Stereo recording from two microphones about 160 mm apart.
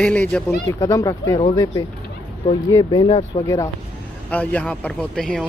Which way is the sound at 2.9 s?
40° left (ahead or behind).